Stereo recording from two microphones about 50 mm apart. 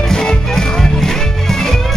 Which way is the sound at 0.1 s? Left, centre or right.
Centre.